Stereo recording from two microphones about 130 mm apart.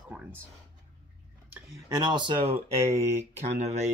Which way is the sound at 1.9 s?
35° right (ahead or behind).